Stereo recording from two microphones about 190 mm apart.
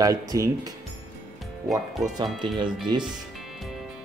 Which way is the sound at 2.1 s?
25° right (ahead or behind).